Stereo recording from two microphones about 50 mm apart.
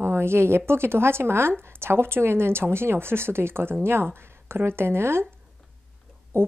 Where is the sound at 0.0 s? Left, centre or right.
Right.